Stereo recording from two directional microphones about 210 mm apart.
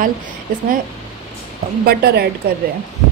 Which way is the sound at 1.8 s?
50° right (ahead or behind).